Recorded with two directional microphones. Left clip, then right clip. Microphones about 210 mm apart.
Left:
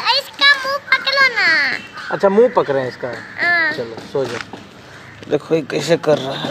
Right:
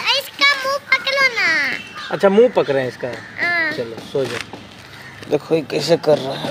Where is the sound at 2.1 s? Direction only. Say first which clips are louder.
Even; 5° right (ahead or behind).